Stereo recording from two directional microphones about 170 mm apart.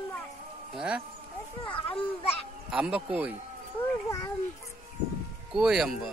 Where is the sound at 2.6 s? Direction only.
5° right (ahead or behind).